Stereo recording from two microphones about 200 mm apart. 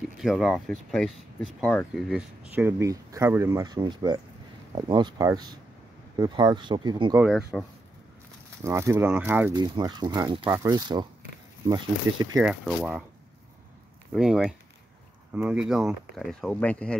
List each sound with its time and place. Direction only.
0.2 s speech: centre (ahead or behind); by 7.2 s 20° right (ahead or behind)
7.2 s speech: centre (ahead or behind)
8.6 s speech: 15° right (ahead or behind)
9.5 s speech: 20° right (ahead or behind)
12.4 s speech: 5° right (ahead or behind)
14.1 s speech: centre (ahead or behind)